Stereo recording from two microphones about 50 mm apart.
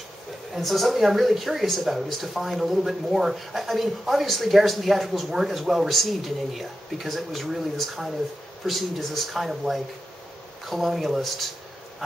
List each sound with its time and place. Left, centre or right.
0.6 s speech: centre